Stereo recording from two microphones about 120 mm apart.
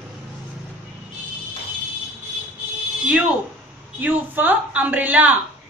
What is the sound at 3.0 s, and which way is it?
A woman's voice, 10° right (ahead or behind).